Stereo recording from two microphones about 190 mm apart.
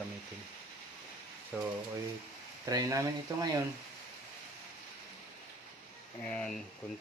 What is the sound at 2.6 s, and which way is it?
Speech, 20° right (ahead or behind).